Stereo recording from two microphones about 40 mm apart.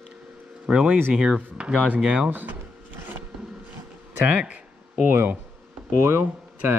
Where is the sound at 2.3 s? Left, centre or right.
Right.